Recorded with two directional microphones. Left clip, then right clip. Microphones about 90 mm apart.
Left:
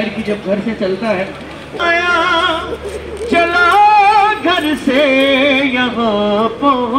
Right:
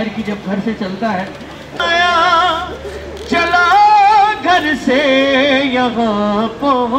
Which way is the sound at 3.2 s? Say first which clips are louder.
Left 1 dB; 25° right (ahead or behind).